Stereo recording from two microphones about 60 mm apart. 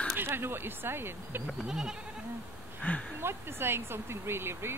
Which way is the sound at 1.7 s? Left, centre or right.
Centre.